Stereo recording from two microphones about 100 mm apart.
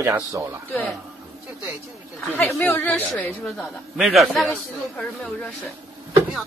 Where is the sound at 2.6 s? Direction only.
20° left (ahead or behind).